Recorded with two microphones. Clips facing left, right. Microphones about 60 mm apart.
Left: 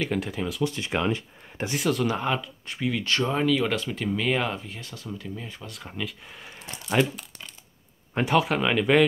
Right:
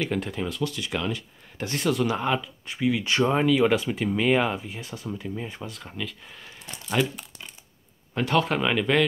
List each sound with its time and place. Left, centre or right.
0.1 s speech: centre
0.7 s speech: left
1.7 s speech: centre
3.1 s speech: centre
5.7 s speech: centre
6.4 s a sound: centre
8.3 s speech: centre